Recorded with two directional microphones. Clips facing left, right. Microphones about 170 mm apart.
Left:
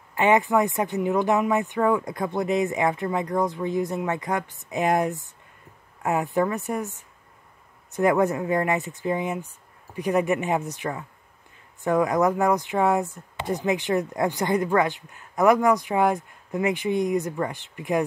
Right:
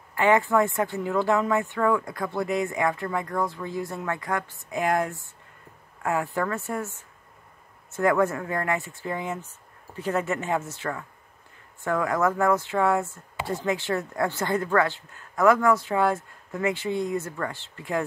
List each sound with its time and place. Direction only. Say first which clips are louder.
0.1 s speech: left 1 dB; 20° left (ahead or behind)